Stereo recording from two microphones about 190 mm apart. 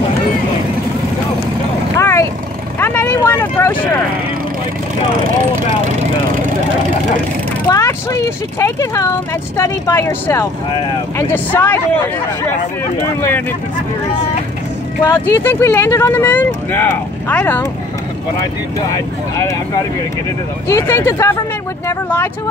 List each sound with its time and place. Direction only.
2.0 s vehicle: 15° left (ahead or behind)
5.2 s speech: 45° right (ahead or behind)
7.7 s speech: 15° left (ahead or behind)
15.0 s speech: 10° left (ahead or behind)
18.9 s speech: 20° left (ahead or behind)